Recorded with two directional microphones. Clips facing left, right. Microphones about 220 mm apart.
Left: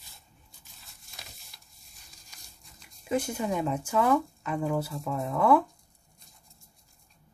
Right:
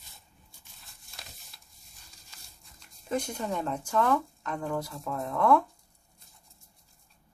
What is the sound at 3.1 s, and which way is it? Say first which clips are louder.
Speech: left 3 dB; 5° left (ahead or behind).